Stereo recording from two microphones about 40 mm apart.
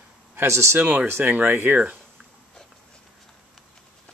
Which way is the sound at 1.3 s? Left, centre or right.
Right.